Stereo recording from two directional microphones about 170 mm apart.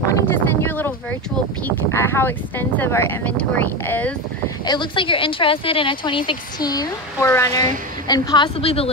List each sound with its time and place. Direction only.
0.3 s speech: 10° left (ahead or behind)
2.0 s speech: 15° left (ahead or behind)
4.6 s a woman's voice: 30° left (ahead or behind)